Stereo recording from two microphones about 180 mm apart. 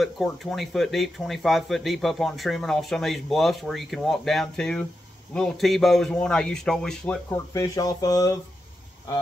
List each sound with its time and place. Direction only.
0.0 s speech: centre (ahead or behind)
7.3 s speech: 15° left (ahead or behind)